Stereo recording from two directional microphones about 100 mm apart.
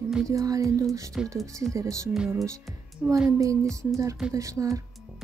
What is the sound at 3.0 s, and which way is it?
Speech, 15° right (ahead or behind).